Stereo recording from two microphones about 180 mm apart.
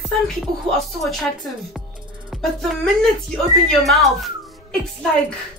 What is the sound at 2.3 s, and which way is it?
Speech, centre (ahead or behind).